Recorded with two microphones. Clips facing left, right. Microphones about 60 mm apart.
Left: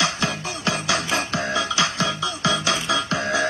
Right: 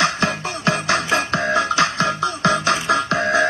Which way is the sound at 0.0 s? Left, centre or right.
Right.